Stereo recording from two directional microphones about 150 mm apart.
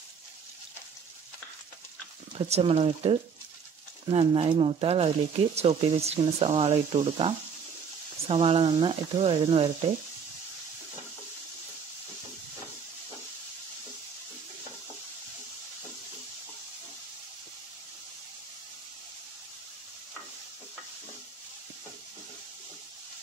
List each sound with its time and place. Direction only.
2.3 s speech: 40° right (ahead or behind)